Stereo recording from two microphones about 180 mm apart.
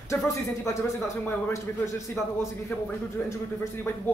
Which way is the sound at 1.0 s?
10° left (ahead or behind).